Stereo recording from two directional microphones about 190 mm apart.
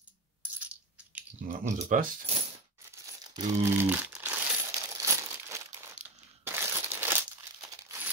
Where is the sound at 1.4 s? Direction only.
40° right (ahead or behind).